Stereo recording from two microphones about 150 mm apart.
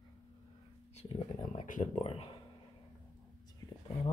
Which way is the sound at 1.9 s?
40° left (ahead or behind).